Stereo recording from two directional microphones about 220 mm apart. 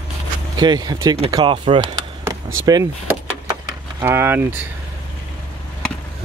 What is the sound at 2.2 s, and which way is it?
Vehicle, 15° right (ahead or behind).